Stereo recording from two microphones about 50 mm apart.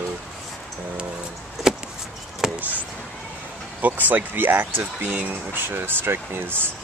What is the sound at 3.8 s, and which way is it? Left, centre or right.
Speech, right.